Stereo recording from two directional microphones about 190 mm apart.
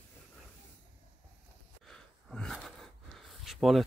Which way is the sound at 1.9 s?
Centre (ahead or behind).